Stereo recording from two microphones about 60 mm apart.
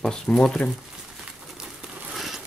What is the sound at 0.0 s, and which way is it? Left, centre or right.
Speech, centre.